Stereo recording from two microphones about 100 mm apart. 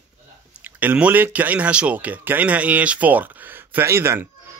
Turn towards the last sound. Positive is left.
turn(degrees=-25)  # may be behind; listen again after turning